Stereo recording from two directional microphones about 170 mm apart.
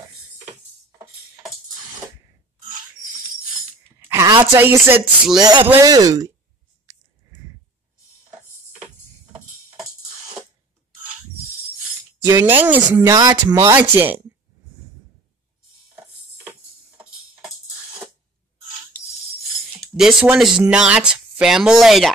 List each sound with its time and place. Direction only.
4.1 s speech: 15° right (ahead or behind)
5.4 s speech: 25° right (ahead or behind)
12.3 s speech: 10° right (ahead or behind)
16.0 s music: 10° right (ahead or behind)
19.9 s speech: centre (ahead or behind)